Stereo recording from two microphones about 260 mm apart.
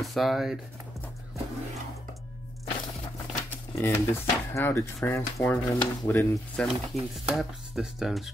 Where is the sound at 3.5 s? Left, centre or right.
Centre.